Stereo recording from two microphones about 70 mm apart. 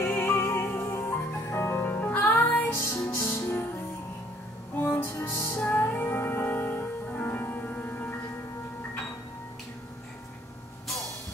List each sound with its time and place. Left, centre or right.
0.0 s music: left
4.9 s music: left